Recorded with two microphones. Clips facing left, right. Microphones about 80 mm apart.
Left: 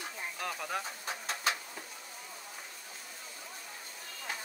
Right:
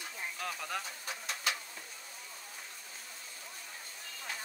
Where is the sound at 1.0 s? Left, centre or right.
Left.